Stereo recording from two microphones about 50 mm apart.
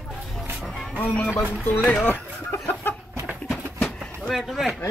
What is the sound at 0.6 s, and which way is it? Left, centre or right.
Music, centre.